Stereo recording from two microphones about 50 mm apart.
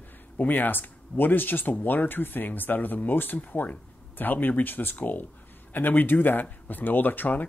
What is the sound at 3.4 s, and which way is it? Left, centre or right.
Speech, left.